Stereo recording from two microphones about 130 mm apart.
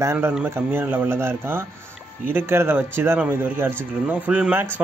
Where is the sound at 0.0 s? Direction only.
20° right (ahead or behind).